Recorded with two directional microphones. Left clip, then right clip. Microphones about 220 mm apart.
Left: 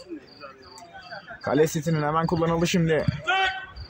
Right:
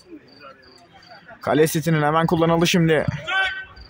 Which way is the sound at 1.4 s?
35° right (ahead or behind).